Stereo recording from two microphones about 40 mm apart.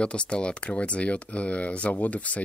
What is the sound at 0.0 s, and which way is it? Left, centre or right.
Speech, left.